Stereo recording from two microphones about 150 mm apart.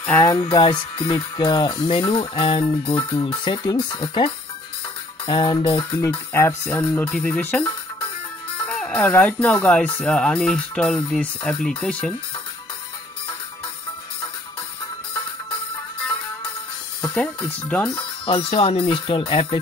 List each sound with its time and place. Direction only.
0.2 s speech: 25° left (ahead or behind); by 12.1 s 5° left (ahead or behind)
17.0 s speech: 5° left (ahead or behind)
18.2 s speech: 35° left (ahead or behind)